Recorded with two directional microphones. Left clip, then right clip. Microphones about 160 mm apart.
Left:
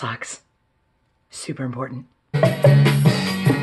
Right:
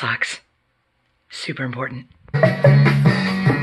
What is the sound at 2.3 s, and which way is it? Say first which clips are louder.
Music: right 1 dB; 55° left (ahead or behind).